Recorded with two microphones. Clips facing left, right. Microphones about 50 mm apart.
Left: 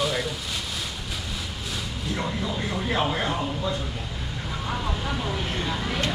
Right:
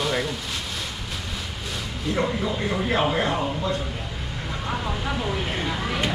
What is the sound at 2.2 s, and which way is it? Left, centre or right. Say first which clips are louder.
Speech: right 3 dB; centre.